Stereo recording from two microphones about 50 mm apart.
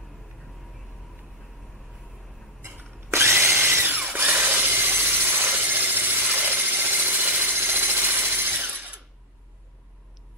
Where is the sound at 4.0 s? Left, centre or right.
Right.